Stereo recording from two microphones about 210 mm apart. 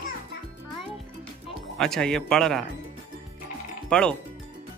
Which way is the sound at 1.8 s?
5° left (ahead or behind).